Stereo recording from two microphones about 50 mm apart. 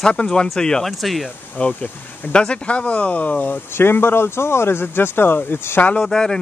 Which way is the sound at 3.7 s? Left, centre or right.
Left.